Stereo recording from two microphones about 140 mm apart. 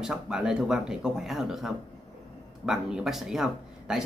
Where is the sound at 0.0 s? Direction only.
5° right (ahead or behind).